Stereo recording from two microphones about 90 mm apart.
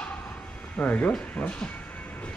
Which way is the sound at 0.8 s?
15° left (ahead or behind).